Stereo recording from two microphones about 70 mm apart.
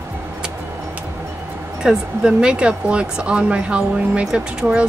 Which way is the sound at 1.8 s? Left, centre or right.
Centre.